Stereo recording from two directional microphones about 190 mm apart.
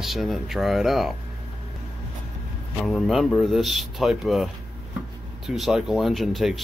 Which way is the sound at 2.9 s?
Centre (ahead or behind).